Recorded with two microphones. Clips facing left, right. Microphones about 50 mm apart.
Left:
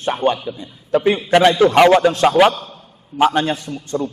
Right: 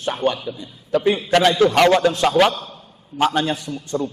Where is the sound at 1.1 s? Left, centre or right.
Centre.